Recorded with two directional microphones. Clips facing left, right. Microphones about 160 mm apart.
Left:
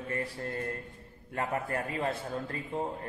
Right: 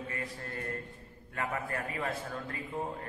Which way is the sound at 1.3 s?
30° left (ahead or behind).